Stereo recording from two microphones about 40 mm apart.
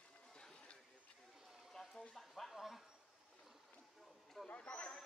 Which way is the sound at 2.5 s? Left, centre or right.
Centre.